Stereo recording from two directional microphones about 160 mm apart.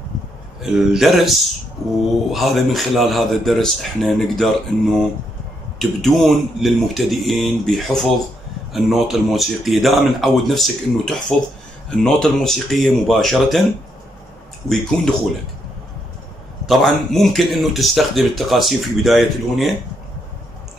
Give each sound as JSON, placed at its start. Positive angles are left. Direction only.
{"t": 0.6, "sound": "speech", "side_deg": 0}
{"t": 14.7, "sound": "speech", "side_deg": 0}
{"t": 16.6, "sound": "speech", "side_deg": 0}